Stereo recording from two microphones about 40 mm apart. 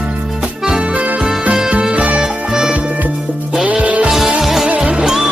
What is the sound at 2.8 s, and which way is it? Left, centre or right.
Music, right.